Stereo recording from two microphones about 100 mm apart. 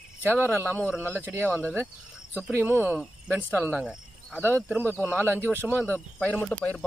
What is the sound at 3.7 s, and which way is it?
Cricket, 10° right (ahead or behind).